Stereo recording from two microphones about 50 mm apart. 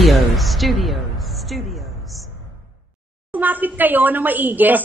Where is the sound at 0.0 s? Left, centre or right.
Centre.